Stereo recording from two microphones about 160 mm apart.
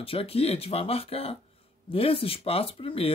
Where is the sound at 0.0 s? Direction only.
35° left (ahead or behind).